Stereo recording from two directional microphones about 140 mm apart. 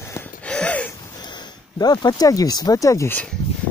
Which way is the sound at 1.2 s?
30° left (ahead or behind).